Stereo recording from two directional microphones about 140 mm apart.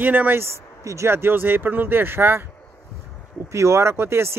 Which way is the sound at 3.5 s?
20° right (ahead or behind).